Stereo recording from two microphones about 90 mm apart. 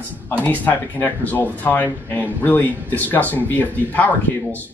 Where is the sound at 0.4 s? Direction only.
20° left (ahead or behind).